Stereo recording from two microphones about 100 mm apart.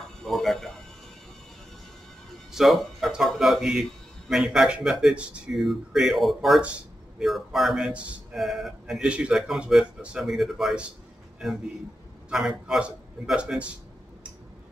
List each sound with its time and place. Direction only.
0.2 s speech: centre (ahead or behind)
2.5 s speech: centre (ahead or behind)
12.3 s speech: 5° right (ahead or behind)